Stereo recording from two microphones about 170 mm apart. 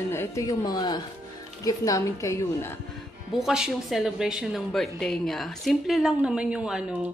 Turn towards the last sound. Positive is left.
turn(degrees=-5)  # may be behind; listen again after turning